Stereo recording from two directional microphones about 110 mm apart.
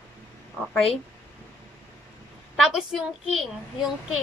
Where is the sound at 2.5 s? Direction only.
Centre (ahead or behind).